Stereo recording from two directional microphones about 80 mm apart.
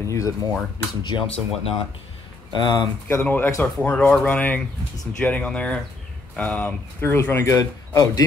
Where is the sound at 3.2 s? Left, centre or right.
Left.